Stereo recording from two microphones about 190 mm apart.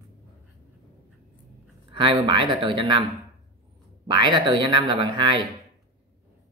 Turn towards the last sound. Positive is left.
turn(degrees=-25)  # may be behind; listen again after turning